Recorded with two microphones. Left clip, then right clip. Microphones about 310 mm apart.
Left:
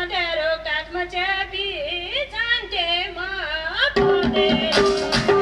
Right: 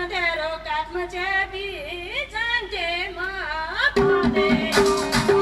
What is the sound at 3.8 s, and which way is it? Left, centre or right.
Music, left.